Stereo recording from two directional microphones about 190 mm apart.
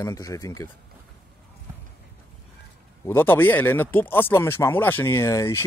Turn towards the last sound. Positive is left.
turn(degrees=15)  # may be behind; listen again after turning